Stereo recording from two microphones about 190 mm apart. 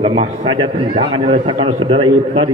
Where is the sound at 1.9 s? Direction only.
25° right (ahead or behind).